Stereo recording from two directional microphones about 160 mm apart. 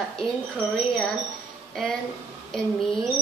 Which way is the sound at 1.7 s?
Centre (ahead or behind).